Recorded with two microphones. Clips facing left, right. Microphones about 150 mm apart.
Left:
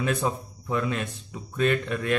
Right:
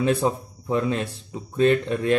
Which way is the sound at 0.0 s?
30° right (ahead or behind).